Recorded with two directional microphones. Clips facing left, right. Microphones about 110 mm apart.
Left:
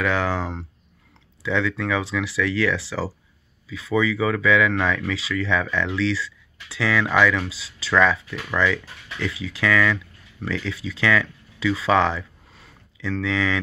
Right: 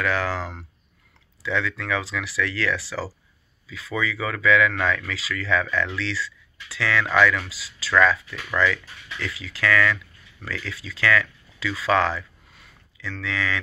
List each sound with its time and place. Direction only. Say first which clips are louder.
0.0 s speech: left 2 dB; 20° left (ahead or behind)
1.4 s speech: left 3 dB; 20° left (ahead or behind)
12.5 s a sound: left 4 dB; 30° left (ahead or behind)